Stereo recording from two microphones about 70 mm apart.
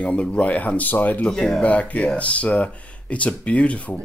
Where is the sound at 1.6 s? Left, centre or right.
Centre.